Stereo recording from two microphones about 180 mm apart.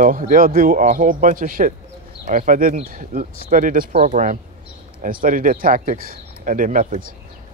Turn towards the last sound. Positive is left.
turn(degrees=-50)  # may be behind; listen again after turning